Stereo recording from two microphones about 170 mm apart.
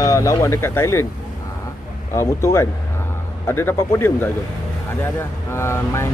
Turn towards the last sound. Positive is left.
turn(degrees=15)  # may be behind; listen again after turning